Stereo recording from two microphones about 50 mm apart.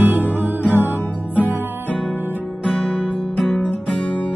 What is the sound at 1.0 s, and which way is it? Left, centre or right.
Music, left.